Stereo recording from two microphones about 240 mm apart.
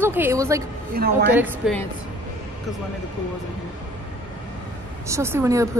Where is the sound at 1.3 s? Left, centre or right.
Centre.